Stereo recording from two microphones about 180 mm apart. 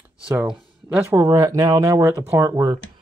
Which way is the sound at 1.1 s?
20° right (ahead or behind).